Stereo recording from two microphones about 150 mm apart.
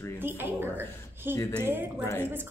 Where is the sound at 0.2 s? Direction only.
15° right (ahead or behind).